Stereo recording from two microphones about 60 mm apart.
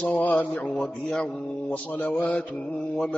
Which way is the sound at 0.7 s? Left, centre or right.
Centre.